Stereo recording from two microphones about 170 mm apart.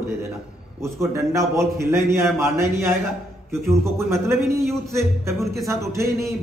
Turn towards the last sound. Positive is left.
turn(degrees=-15)  # may be behind; listen again after turning